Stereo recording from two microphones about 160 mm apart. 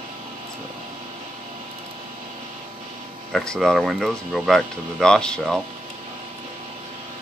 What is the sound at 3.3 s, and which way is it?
Speech, 5° left (ahead or behind).